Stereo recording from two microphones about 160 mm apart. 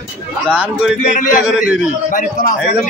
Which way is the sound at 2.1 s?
55° left (ahead or behind).